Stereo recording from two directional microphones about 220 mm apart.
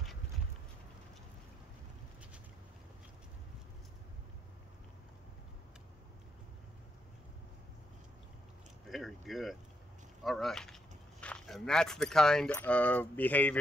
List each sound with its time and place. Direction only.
8.8 s speech: centre (ahead or behind)